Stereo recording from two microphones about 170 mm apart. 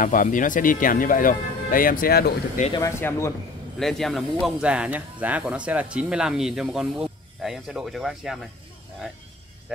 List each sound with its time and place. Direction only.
0.0 s speech: 50° left (ahead or behind)
2.7 s speech: 15° left (ahead or behind)
3.8 s speech: centre (ahead or behind)